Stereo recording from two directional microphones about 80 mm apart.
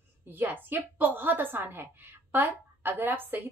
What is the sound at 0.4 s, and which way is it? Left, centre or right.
A woman's voice, right.